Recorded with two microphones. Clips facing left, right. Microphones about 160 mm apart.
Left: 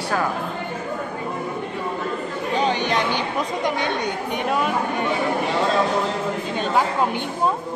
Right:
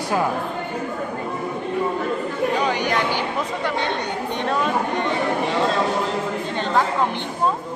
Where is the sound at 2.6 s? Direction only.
25° left (ahead or behind).